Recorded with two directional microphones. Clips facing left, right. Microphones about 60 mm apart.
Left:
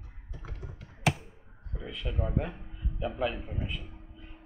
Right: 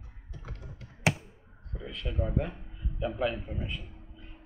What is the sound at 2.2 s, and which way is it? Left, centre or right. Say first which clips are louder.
A man's voice: right 1 dB; centre.